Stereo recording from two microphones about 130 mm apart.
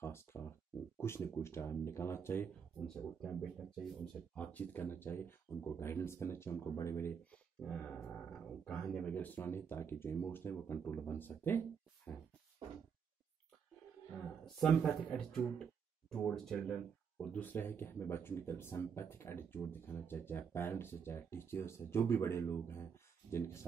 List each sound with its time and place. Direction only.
0.0 s speech: 20° left (ahead or behind)
2.9 s speech: 5° left (ahead or behind)
4.4 s speech: 15° left (ahead or behind)
14.6 s speech: 5° left (ahead or behind)